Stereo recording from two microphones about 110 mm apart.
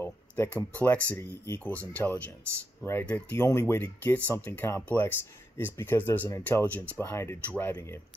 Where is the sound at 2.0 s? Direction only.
15° left (ahead or behind).